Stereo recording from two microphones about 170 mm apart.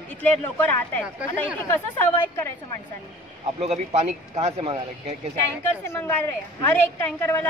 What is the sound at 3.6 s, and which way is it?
Speech, 40° right (ahead or behind).